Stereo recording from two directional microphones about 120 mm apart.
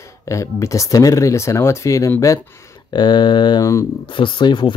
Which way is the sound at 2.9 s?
40° left (ahead or behind).